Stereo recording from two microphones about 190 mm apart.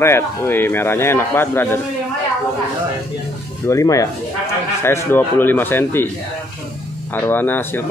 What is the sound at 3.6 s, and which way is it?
Speech, 15° left (ahead or behind).